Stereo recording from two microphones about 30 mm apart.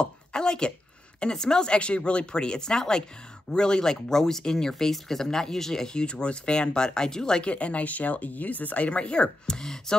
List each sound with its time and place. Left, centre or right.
0.0 s a sound: left
1.3 s speech: left
1.7 s speech: left; by 5.9 s centre
5.9 s speech: left
7.4 s speech: left
9.5 s speech: left